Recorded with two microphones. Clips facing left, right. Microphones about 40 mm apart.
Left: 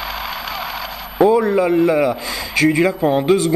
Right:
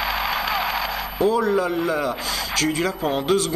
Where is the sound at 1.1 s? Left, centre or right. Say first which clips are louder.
Left 6 dB; left.